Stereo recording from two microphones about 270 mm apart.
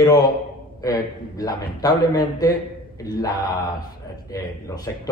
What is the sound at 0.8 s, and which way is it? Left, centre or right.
A man's voice, centre.